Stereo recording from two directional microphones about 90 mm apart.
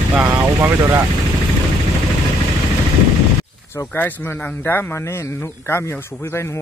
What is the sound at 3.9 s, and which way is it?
Speech, 20° left (ahead or behind).